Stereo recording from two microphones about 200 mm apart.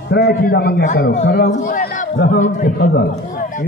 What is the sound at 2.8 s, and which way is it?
Speech, 55° left (ahead or behind).